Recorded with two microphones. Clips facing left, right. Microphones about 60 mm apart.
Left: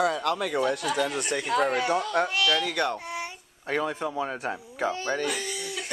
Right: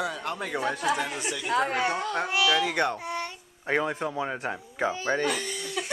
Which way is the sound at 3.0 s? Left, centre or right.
Centre.